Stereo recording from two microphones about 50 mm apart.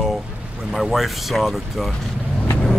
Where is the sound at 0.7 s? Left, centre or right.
Centre.